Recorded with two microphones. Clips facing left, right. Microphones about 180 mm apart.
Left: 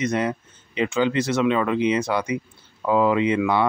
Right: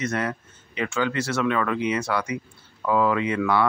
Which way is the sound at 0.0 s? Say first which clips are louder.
Left 4 dB; 20° left (ahead or behind).